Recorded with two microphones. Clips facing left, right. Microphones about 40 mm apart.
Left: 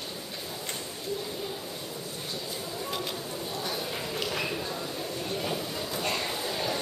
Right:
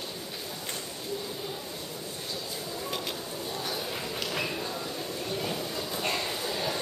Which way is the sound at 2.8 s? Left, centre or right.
Centre.